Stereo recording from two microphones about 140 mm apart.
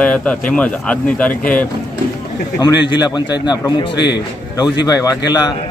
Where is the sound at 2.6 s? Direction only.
30° left (ahead or behind).